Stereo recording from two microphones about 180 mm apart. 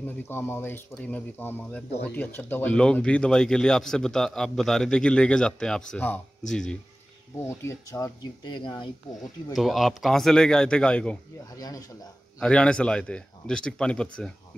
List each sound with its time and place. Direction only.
0.0 s speech: 10° left (ahead or behind)
7.3 s speech: 15° left (ahead or behind)
9.5 s speech: centre (ahead or behind)
11.5 s speech: 20° left (ahead or behind)
12.4 s speech: 5° left (ahead or behind)